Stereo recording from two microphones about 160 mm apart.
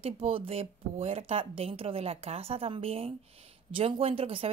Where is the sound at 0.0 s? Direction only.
40° right (ahead or behind).